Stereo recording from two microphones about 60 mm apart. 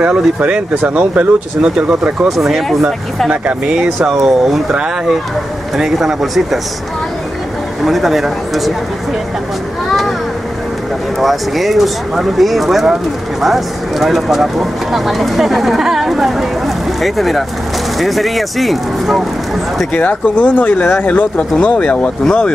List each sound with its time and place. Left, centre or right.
0.0 s speech: right
1.6 s speech: centre
2.2 s speech: centre
7.8 s speech: centre
9.8 s a sound: centre
11.1 s speech: centre
19.9 s speech: left